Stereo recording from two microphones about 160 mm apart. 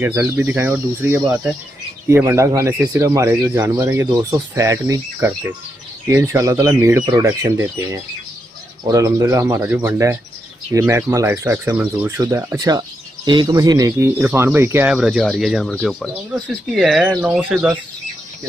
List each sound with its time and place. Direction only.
0.0 s speech: 15° right (ahead or behind)